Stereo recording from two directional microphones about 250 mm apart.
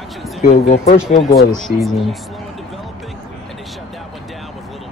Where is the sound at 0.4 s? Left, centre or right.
Left.